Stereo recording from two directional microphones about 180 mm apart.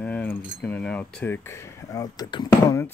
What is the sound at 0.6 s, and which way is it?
Speech, 5° left (ahead or behind).